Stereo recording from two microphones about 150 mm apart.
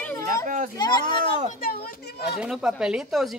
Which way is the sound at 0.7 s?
30° left (ahead or behind).